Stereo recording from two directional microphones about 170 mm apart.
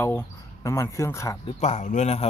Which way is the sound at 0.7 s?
15° left (ahead or behind).